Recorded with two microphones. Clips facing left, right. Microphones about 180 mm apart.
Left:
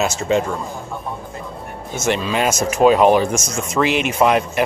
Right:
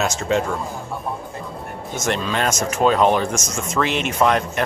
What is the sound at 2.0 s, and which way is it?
Speech, 5° left (ahead or behind).